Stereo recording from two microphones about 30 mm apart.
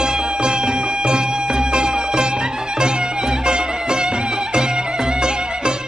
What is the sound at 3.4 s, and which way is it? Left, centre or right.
Music, centre.